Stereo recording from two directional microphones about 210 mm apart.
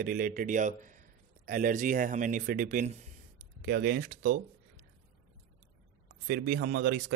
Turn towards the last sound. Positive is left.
turn(degrees=-50)  # may be behind; listen again after turning